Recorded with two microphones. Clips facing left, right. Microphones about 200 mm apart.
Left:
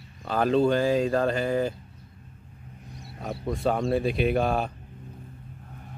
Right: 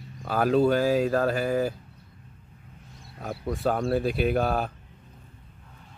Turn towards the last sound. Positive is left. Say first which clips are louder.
# left 1 dB
turn(degrees=0)  # may be behind; listen again after turning